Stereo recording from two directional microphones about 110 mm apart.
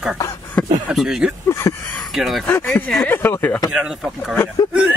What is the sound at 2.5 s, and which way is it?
Speech, 20° left (ahead or behind).